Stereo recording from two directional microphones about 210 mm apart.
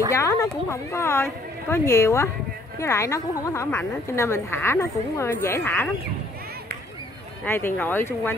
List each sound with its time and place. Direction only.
0.1 s a woman's voice: 15° left (ahead or behind)
7.4 s a woman's voice: 10° left (ahead or behind)